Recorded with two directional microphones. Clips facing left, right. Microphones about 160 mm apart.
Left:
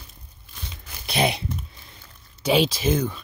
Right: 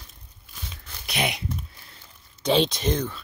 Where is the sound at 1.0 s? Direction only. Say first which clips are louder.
Left 5 dB; 30° left (ahead or behind).